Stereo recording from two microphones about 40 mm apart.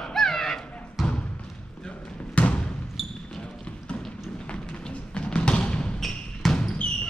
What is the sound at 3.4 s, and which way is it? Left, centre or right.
Basketball bounce, left.